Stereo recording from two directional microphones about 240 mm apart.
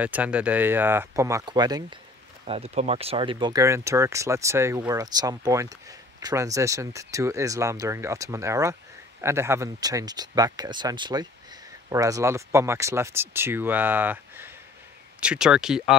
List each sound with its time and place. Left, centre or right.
0.0 s speech: centre